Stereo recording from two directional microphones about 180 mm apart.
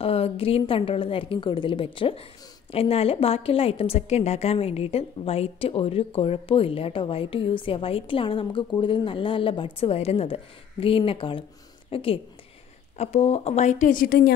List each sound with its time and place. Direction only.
0.0 s a woman's voice: 35° left (ahead or behind); by 14.3 s 60° left (ahead or behind)